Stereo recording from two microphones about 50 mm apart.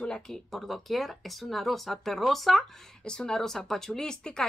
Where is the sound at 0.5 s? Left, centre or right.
Centre.